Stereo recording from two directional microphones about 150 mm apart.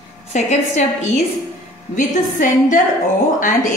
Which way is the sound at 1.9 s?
60° left (ahead or behind).